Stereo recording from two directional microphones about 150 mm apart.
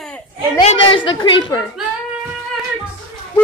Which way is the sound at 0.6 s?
35° left (ahead or behind).